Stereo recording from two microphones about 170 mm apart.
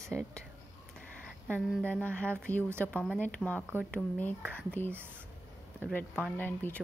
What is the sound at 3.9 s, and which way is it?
Speech, 10° left (ahead or behind).